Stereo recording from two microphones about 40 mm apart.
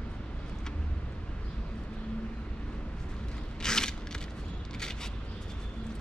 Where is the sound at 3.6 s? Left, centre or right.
Centre.